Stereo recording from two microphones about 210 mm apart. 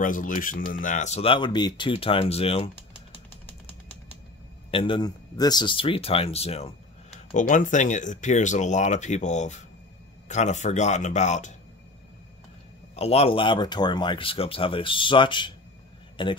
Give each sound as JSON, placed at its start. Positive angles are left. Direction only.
{"t": 0.0, "sound": "speech", "side_deg": 40}
{"t": 4.6, "sound": "speech", "side_deg": 25}
{"t": 12.9, "sound": "speech", "side_deg": 30}